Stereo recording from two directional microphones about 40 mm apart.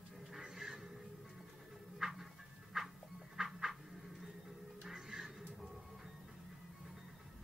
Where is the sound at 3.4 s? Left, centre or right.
Centre.